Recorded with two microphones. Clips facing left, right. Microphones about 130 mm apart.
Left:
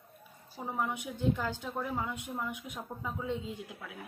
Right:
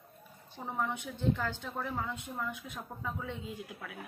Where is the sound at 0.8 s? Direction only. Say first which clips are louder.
Left 1 dB; 10° left (ahead or behind).